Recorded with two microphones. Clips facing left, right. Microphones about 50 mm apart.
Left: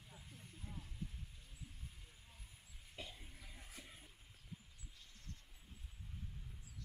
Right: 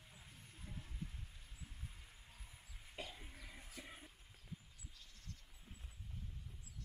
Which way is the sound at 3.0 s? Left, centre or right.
Centre.